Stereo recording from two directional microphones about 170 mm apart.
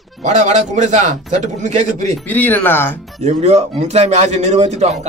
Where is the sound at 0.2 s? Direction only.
45° right (ahead or behind).